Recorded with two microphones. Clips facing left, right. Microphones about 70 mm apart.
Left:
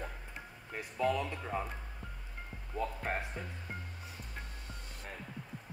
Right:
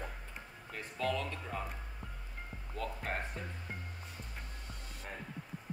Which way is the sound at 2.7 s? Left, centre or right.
Centre.